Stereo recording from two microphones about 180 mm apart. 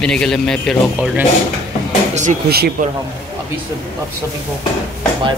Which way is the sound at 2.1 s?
45° right (ahead or behind).